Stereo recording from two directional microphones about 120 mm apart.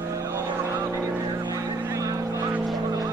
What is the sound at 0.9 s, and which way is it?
Vehicle, 25° right (ahead or behind).